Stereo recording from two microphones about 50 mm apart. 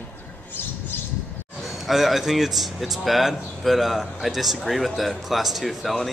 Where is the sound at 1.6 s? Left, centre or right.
Centre.